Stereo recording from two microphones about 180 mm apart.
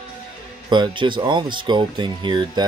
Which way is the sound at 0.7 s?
25° right (ahead or behind).